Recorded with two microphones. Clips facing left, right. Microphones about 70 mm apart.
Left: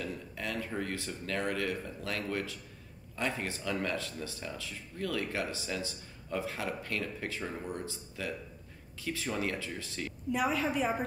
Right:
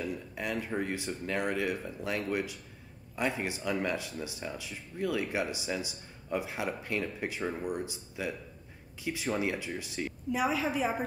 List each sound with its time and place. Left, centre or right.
0.0 s speech: centre
10.3 s a woman's voice: centre